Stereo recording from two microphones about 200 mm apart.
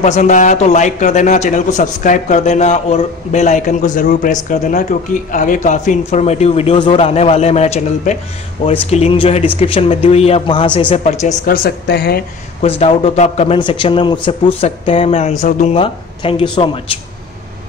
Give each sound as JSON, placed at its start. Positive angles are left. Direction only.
{"t": 0.0, "sound": "a man's voice", "side_deg": 35}
{"t": 12.6, "sound": "a man's voice", "side_deg": 30}